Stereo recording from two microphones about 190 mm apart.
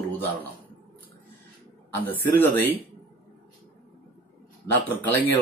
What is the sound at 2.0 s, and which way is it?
Speech, 10° left (ahead or behind).